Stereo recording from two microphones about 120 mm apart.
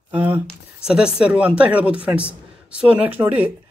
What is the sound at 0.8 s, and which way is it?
Speech, 5° right (ahead or behind).